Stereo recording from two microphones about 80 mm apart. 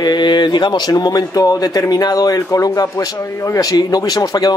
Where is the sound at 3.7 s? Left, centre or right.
Left.